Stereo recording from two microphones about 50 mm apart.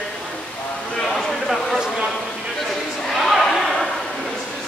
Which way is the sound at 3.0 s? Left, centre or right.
Centre.